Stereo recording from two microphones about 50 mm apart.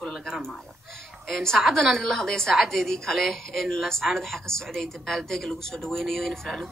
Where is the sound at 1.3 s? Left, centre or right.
Centre.